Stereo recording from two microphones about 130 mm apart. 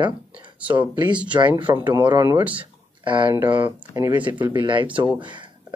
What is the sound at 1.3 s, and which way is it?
Speech, 35° right (ahead or behind).